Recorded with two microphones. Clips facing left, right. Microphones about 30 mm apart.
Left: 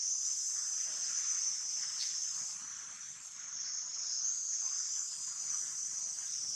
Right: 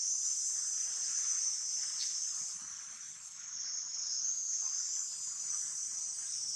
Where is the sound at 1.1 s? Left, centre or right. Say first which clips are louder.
Right 1 dB; centre.